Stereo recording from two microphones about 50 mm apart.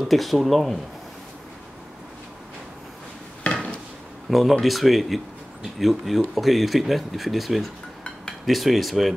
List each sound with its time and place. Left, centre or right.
0.1 s speech: centre
3.4 s a sound: left
4.3 s speech: centre